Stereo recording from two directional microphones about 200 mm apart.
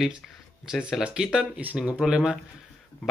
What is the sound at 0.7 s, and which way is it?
Speech, centre (ahead or behind).